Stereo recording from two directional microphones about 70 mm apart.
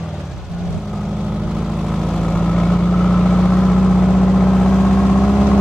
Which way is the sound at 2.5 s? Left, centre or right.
Centre.